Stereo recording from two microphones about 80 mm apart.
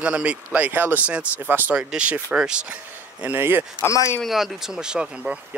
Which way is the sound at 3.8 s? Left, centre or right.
Left.